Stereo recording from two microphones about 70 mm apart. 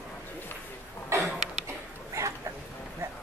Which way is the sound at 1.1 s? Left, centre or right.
Right.